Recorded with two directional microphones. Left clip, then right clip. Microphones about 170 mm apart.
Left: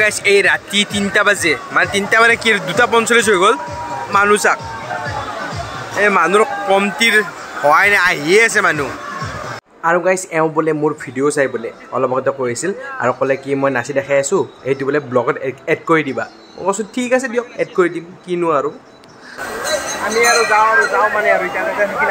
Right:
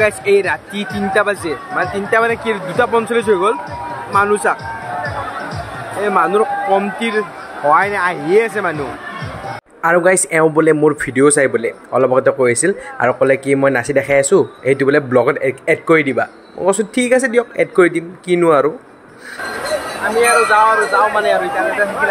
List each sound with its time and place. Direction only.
0.0 s speech: centre (ahead or behind)
5.9 s speech: 10° left (ahead or behind); by 8.8 s 5° right (ahead or behind)
9.8 s speech: 25° right (ahead or behind)
20.2 s speech: centre (ahead or behind)